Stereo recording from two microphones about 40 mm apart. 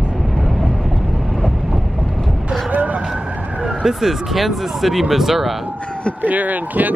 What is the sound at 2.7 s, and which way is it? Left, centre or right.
Vehicle, right.